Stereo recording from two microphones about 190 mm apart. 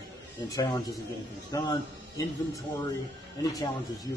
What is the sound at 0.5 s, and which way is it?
Speech, 20° left (ahead or behind).